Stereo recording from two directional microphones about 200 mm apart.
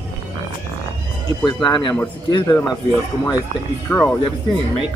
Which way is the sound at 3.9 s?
10° left (ahead or behind).